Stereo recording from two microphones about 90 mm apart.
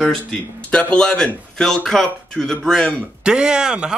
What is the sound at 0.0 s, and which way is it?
Speech, 5° left (ahead or behind).